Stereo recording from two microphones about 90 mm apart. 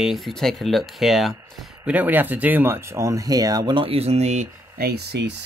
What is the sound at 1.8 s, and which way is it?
Speech, 20° right (ahead or behind).